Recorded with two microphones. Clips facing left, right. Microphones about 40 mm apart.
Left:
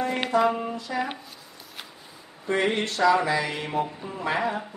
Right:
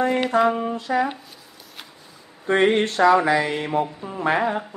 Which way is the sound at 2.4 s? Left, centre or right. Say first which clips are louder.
Right 6 dB; right.